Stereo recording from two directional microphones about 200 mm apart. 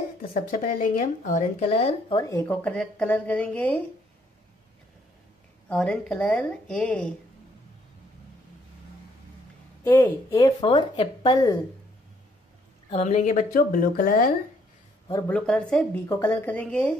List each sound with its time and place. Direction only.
0.2 s speech: 45° left (ahead or behind); by 3.8 s 5° left (ahead or behind)
5.7 s a woman's voice: 5° left (ahead or behind)
9.8 s speech: 10° left (ahead or behind)
12.9 s speech: 35° left (ahead or behind)
15.0 s speech: 10° left (ahead or behind)